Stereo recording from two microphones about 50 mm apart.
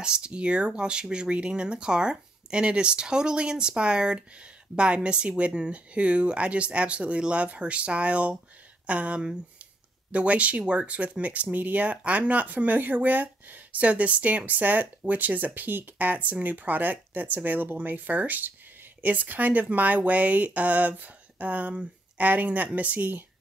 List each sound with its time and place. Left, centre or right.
0.0 s speech: centre; by 23.2 s right